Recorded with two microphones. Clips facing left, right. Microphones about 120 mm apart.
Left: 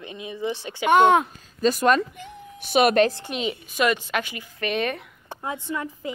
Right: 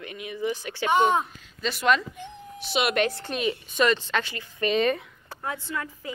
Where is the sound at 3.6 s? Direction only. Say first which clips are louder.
Left 1 dB; 10° left (ahead or behind).